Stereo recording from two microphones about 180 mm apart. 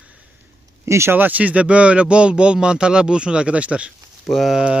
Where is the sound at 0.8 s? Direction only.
15° right (ahead or behind).